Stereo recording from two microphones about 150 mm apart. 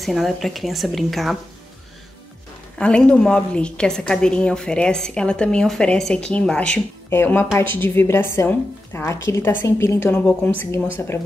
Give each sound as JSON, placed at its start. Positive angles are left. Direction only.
{"t": 0.0, "sound": "a woman's voice", "side_deg": 0}
{"t": 2.8, "sound": "a woman's voice", "side_deg": 5}